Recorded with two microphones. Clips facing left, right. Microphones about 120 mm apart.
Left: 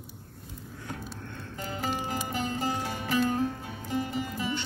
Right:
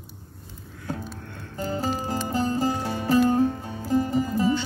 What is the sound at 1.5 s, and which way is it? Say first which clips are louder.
Music: right 6 dB; 35° right (ahead or behind).